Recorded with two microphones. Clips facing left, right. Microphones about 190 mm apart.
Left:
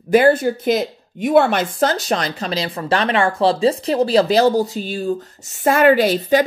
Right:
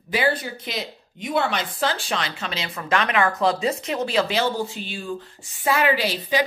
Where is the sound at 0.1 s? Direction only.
50° left (ahead or behind).